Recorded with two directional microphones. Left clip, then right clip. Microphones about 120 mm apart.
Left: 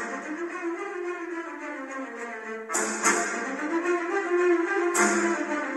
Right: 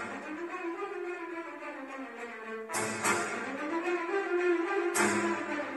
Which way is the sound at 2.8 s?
40° right (ahead or behind).